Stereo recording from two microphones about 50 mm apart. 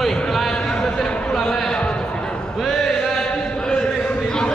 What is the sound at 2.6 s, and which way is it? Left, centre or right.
Chant, centre.